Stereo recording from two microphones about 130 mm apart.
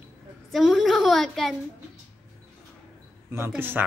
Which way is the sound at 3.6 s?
15° right (ahead or behind).